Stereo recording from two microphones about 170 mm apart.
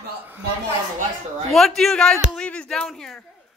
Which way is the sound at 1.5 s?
Centre (ahead or behind).